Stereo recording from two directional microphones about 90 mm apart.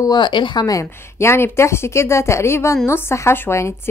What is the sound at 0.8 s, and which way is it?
Speech, 30° left (ahead or behind).